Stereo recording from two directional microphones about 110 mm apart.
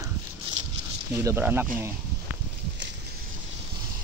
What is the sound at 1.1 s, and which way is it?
Speech, 25° right (ahead or behind).